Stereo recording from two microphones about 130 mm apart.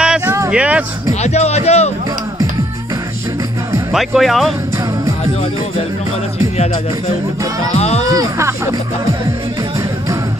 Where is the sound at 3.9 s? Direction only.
Centre (ahead or behind).